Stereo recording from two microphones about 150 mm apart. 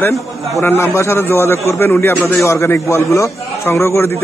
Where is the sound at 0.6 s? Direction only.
20° left (ahead or behind).